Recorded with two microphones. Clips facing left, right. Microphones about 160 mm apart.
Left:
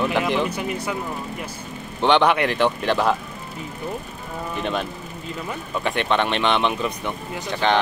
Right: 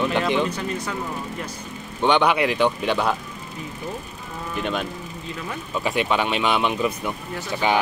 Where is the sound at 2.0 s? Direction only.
Centre (ahead or behind).